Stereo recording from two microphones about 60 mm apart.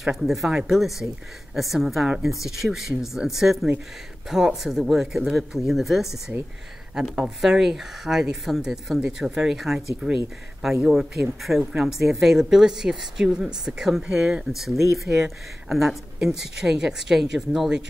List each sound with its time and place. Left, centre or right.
0.0 s speech: centre
10.9 s speech: centre